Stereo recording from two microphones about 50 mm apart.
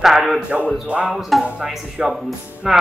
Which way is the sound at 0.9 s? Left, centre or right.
Right.